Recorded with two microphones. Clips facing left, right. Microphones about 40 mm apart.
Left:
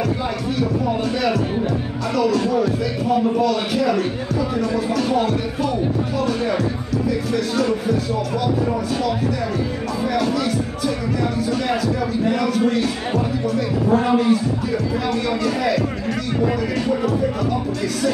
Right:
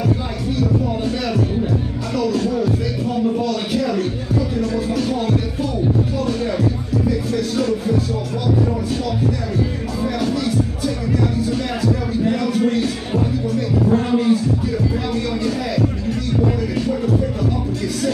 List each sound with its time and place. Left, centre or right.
0.6 s music: centre
2.1 s speech: centre
10.0 s music: centre
12.2 s a sound: centre
12.5 s speech: centre
15.4 s speech: centre
16.8 s music: centre